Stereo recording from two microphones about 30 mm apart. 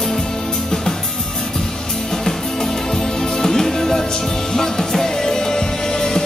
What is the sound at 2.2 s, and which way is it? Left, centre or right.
Music, left.